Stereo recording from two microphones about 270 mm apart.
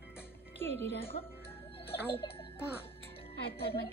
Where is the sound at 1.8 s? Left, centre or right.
Left.